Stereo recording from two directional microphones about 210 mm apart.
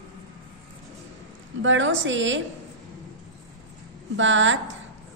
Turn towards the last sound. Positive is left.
turn(degrees=-60)  # may be behind; listen again after turning